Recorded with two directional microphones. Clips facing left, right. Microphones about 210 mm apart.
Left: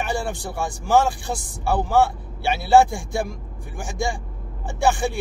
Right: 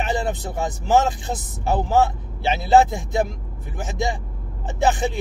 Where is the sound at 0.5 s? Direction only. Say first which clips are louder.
Even; 20° right (ahead or behind).